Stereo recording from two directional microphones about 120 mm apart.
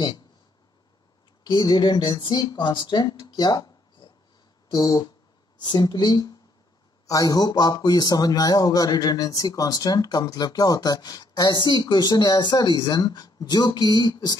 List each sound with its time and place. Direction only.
1.4 s a woman's voice: 35° left (ahead or behind)